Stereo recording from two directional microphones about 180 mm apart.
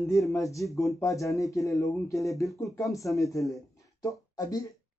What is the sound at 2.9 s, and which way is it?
Speech, 15° left (ahead or behind).